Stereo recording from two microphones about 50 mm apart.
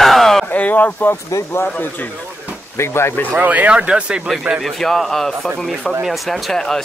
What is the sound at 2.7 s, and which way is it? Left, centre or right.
Speech, left.